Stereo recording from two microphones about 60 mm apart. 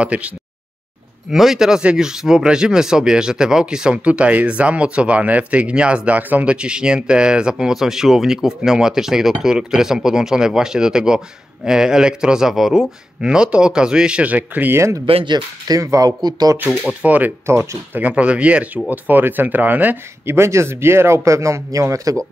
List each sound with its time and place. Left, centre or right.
0.0 s speech: right
1.3 s speech: centre
4.0 s speech: right
6.5 s speech: centre
14.7 s speech: right
15.7 s speech: right
17.0 s speech: right
20.3 s speech: right